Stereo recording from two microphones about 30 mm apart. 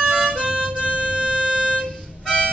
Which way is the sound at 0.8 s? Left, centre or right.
Right.